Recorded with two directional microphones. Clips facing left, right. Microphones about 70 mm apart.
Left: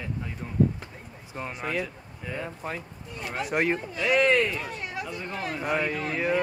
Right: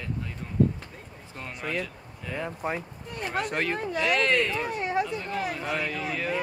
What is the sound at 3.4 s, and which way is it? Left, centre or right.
Speech, centre.